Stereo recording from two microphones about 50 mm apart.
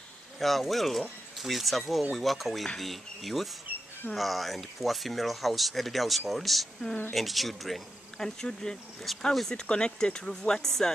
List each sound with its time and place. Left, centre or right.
0.4 s speech: centre
9.7 s speech: centre